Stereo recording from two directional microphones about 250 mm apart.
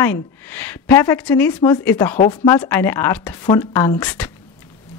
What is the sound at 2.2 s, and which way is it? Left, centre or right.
Speech, centre.